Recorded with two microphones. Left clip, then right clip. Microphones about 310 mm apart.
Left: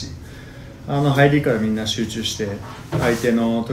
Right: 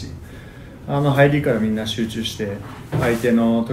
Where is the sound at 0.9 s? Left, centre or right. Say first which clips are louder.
Even; centre.